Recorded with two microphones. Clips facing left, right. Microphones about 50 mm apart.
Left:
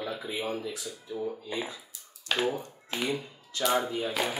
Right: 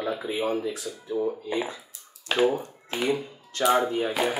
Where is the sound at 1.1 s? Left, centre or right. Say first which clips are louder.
Right 7 dB; right.